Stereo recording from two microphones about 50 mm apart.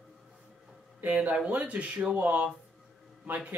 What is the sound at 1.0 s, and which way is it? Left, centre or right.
Speech, right.